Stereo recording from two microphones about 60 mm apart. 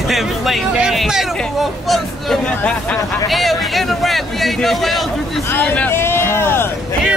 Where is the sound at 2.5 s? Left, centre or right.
Left.